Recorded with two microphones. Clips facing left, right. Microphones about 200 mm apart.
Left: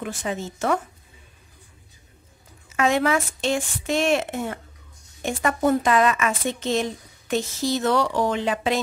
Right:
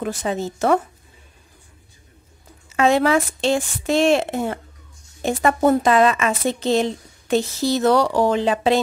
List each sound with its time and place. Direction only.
0.0 s a woman's voice: 40° right (ahead or behind)
2.7 s a woman's voice: 30° right (ahead or behind)
5.7 s a woman's voice: 35° right (ahead or behind)